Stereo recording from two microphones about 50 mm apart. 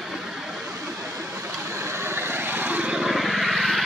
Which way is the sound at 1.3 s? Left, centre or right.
Right.